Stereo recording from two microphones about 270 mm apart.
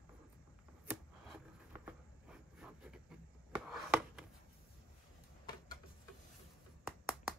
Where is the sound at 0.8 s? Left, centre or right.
Centre.